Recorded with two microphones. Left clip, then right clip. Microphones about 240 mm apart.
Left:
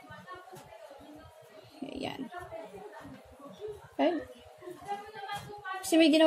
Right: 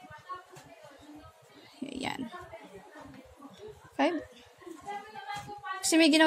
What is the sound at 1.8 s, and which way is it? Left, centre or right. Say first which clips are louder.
Burping: right 2 dB; right.